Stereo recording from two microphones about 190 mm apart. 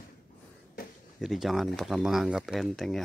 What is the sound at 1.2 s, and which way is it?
Speech, centre (ahead or behind).